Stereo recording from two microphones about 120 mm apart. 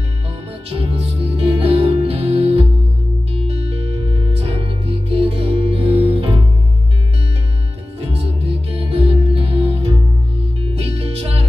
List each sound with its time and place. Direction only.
0.7 s music: 55° right (ahead or behind)
8.0 s music: 55° right (ahead or behind)